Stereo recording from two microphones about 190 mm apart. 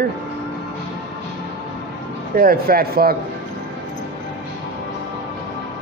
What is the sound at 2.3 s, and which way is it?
Speech, 50° right (ahead or behind).